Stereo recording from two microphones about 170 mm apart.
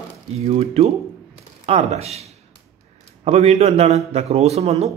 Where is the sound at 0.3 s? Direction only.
35° right (ahead or behind).